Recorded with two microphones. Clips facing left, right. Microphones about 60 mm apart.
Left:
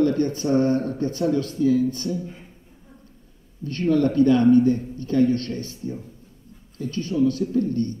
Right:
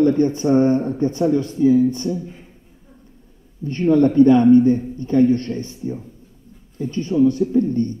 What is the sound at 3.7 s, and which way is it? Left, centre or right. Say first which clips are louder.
A man's voice: right 5 dB; right.